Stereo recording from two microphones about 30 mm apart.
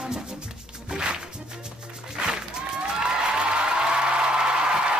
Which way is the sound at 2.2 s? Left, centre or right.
Right.